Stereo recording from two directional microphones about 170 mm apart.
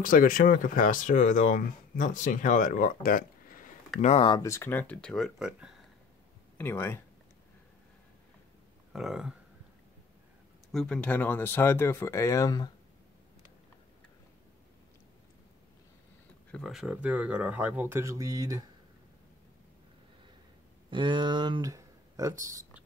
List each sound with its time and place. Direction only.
0.0 s speech: 55° left (ahead or behind)
4.0 s speech: 40° left (ahead or behind)
4.3 s speech: 20° left (ahead or behind); by 5.8 s 5° right (ahead or behind)
6.6 s speech: 15° left (ahead or behind)
8.9 s speech: centre (ahead or behind)
10.7 s speech: 5° left (ahead or behind); by 12.7 s 25° left (ahead or behind)
16.5 s speech: centre (ahead or behind); by 18.6 s 20° right (ahead or behind)
20.9 s speech: 30° right (ahead or behind)